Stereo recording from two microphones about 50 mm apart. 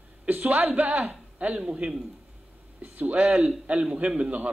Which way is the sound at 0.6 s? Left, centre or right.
Right.